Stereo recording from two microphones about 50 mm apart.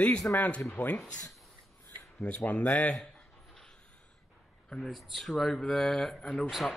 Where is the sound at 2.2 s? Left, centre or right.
Left.